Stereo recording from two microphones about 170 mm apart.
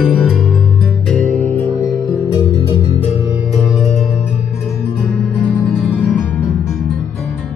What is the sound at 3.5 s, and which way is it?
Music, centre (ahead or behind).